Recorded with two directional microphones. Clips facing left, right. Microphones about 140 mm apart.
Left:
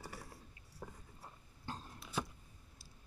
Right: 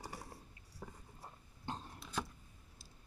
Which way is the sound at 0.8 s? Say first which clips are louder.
Left 1 dB; 5° left (ahead or behind).